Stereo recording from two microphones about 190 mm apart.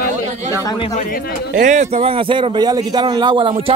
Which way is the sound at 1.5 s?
40° right (ahead or behind).